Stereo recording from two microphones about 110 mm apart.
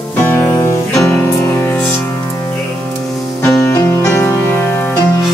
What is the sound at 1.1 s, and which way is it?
Music, 20° left (ahead or behind).